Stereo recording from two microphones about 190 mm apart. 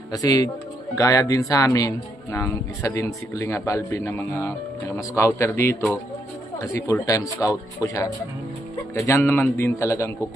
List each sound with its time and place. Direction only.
0.1 s speech: 20° left (ahead or behind)